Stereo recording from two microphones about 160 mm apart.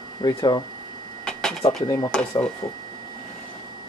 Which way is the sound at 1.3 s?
5° left (ahead or behind).